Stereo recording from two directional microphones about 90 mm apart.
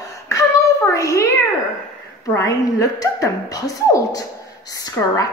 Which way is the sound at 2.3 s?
40° left (ahead or behind).